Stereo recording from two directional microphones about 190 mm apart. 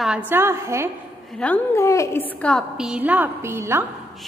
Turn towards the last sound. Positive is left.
turn(degrees=-15)  # may be behind; listen again after turning